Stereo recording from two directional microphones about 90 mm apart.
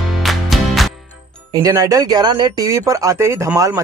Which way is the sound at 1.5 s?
40° right (ahead or behind).